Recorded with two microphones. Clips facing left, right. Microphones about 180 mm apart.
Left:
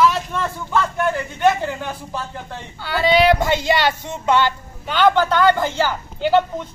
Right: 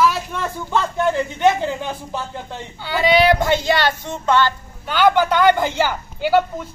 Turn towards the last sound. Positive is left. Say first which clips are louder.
# even
turn(degrees=-10)  # may be behind; listen again after turning